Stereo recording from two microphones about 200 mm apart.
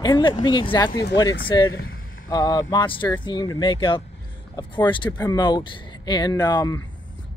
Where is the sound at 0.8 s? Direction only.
55° left (ahead or behind).